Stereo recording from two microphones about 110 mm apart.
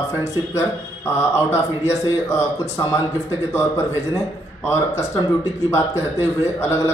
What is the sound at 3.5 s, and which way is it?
Speech, 25° left (ahead or behind).